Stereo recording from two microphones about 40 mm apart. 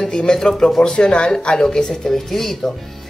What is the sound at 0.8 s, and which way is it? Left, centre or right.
A woman's voice, left.